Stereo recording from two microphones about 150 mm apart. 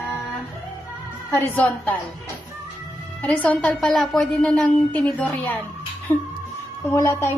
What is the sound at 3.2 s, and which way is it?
A woman's voice, 10° left (ahead or behind).